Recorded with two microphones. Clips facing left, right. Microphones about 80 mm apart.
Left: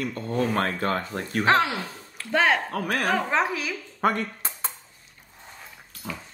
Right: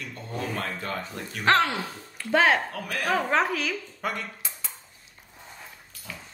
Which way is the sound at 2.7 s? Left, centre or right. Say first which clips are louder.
Left 4 dB; left.